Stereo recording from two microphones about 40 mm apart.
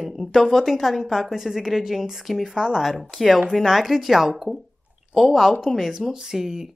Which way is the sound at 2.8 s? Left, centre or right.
Centre.